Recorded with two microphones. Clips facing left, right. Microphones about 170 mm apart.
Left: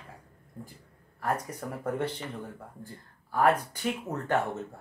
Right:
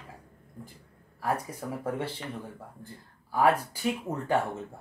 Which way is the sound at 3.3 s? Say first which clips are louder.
Even; 5° right (ahead or behind).